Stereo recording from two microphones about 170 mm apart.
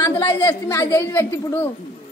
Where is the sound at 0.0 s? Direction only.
20° left (ahead or behind).